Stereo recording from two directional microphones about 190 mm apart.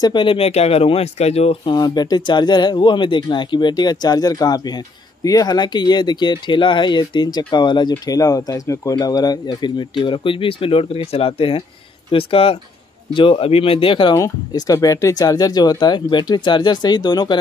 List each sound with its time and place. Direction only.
0.0 s speech: 25° left (ahead or behind)